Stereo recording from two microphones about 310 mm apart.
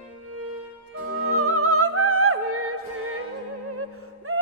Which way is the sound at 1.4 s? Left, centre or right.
Right.